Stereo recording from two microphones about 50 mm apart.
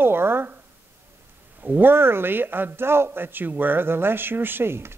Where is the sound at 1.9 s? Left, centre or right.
Right.